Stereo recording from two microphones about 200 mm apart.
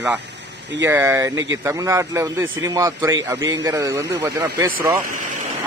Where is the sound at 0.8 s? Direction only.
15° right (ahead or behind).